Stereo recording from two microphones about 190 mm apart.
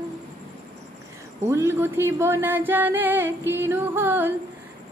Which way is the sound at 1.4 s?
15° right (ahead or behind).